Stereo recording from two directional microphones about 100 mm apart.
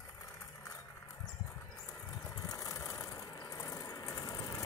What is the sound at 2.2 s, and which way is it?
Vehicle, 35° left (ahead or behind).